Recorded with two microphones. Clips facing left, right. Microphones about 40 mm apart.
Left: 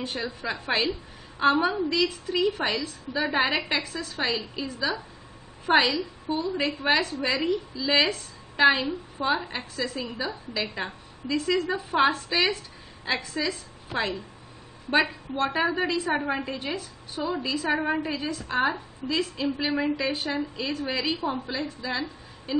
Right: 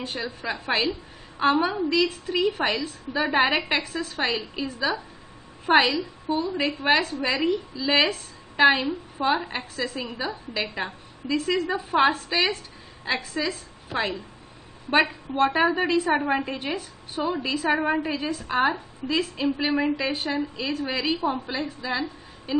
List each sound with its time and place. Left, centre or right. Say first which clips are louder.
0.0 s a woman's voice: even; centre
3.7 s a woman's voice: right 3 dB; centre
5.9 s a woman's voice: right 2 dB; right
6.5 s a woman's voice: right 1 dB; centre
6.9 s a woman's voice: right 2 dB; centre
8.6 s a woman's voice: right 1 dB; centre
9.2 s a woman's voice: right 3 dB; centre
10.8 s a woman's voice: right 2 dB; centre
17.6 s a woman's voice: right 3 dB; centre